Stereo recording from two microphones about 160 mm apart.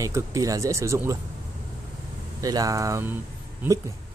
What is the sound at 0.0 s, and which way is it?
Speech, 20° right (ahead or behind).